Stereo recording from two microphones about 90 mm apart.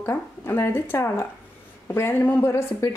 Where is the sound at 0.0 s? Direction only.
25° left (ahead or behind).